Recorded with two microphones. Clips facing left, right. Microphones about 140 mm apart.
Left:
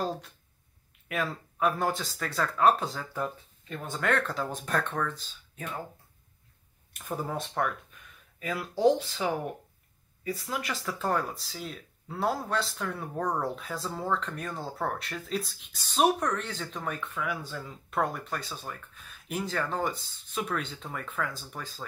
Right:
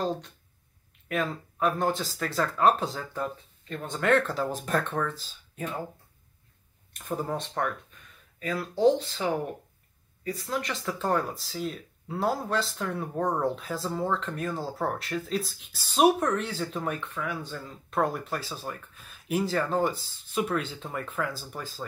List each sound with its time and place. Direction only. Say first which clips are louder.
1.0 s speech: right 3 dB; 5° left (ahead or behind)
6.9 s speech: right 3 dB; 5° left (ahead or behind)
10.5 s speech: right 5 dB; 5° left (ahead or behind)